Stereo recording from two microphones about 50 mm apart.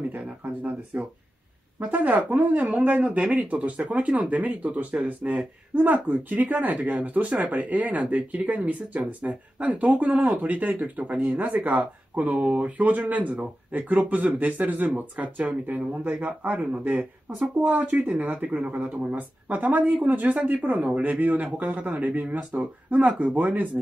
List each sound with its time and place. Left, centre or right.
0.1 s speech: right